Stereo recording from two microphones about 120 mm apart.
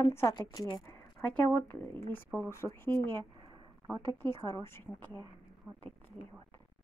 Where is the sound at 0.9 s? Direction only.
10° left (ahead or behind).